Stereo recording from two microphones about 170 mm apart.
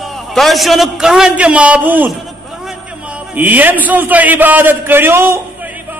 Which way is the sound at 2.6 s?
5° right (ahead or behind).